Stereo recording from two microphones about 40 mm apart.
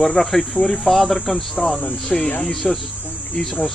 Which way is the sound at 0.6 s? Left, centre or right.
Centre.